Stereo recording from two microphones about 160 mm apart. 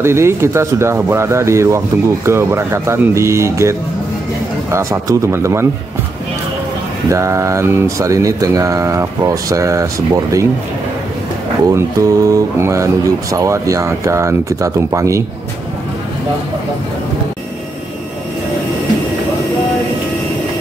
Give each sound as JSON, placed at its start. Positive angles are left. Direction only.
{"t": 0.0, "sound": "speech", "side_deg": -15}
{"t": 7.1, "sound": "speech", "side_deg": -20}
{"t": 11.7, "sound": "speech", "side_deg": -20}